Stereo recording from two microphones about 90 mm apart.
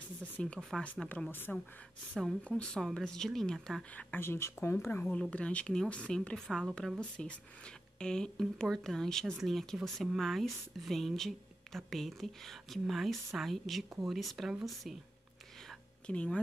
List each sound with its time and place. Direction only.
0.2 s speech: 15° left (ahead or behind)
3.9 s speech: 25° left (ahead or behind)
5.3 s speech: 15° left (ahead or behind)
16.1 s speech: 10° left (ahead or behind)